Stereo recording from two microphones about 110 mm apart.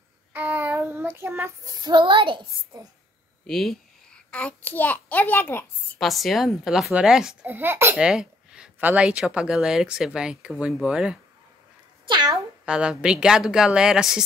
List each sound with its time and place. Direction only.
0.3 s child singing: 20° right (ahead or behind); by 2.4 s 50° right (ahead or behind)
3.4 s a child's voice: centre (ahead or behind); by 5.7 s 20° left (ahead or behind)
5.9 s a woman's voice: centre (ahead or behind)
7.4 s a child's voice: 20° right (ahead or behind)
8.0 s speech: 5° right (ahead or behind)
12.6 s speech: 10° right (ahead or behind)